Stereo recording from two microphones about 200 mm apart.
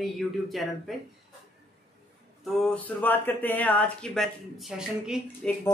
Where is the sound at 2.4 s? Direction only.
Centre (ahead or behind).